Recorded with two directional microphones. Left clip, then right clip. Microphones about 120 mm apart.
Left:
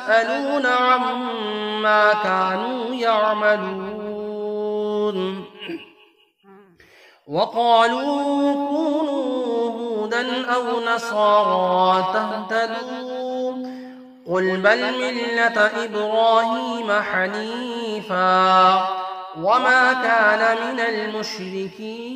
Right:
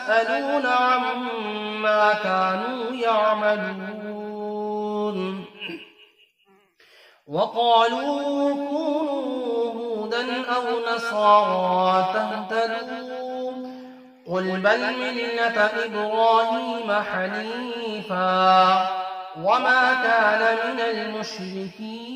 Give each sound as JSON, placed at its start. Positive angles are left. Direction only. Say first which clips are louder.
{"t": 0.0, "sound": "a man's voice", "louder": "left 2 dB", "side_deg": 35}
{"t": 4.6, "sound": "mantra", "louder": "left 4 dB", "side_deg": 35}
{"t": 7.3, "sound": "mantra", "louder": "left 2 dB", "side_deg": 40}
{"t": 14.3, "sound": "a man's voice", "louder": "left 4 dB", "side_deg": 35}